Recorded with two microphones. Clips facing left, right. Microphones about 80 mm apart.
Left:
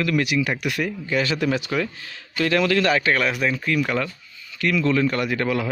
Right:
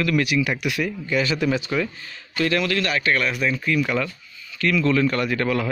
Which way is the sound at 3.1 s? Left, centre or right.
Left.